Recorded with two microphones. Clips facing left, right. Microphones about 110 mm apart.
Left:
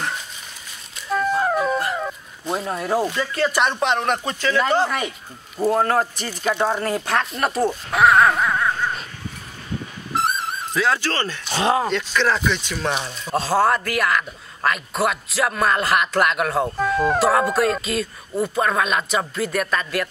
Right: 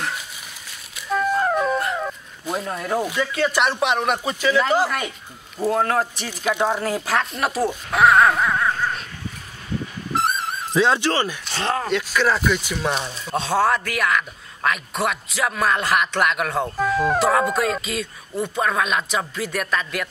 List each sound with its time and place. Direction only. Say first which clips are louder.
0.9 s music: even; centre (ahead or behind)
3.2 s a man's voice: even; centre (ahead or behind)
10.1 s music: even; centre (ahead or behind)
10.7 s speech: right 3 dB; 20° right (ahead or behind)
11.4 s speech: left 4 dB; 10° left (ahead or behind)
11.9 s a man's voice: even; 5° right (ahead or behind)